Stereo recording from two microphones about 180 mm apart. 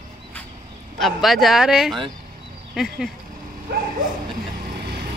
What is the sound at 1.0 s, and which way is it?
A woman's voice, centre (ahead or behind).